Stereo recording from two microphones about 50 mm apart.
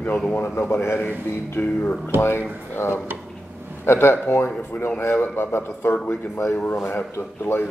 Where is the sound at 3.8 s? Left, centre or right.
Left.